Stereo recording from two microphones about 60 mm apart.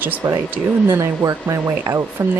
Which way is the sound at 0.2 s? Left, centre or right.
Right.